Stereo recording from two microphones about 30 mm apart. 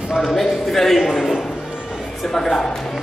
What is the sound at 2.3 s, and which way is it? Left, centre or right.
Speech, centre.